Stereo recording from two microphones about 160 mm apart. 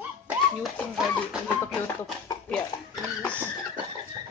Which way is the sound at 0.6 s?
Centre (ahead or behind).